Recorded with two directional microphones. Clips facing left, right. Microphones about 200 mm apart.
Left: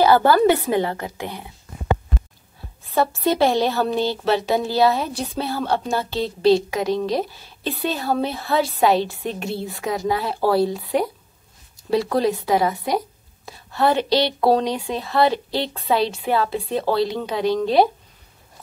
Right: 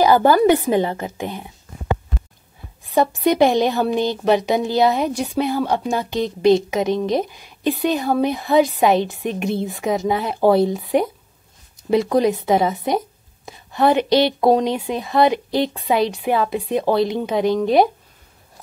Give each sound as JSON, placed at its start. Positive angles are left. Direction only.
{"t": 0.0, "sound": "a woman's voice", "side_deg": -15}
{"t": 2.8, "sound": "a woman's voice", "side_deg": -15}